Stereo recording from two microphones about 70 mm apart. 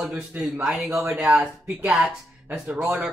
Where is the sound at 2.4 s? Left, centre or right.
Right.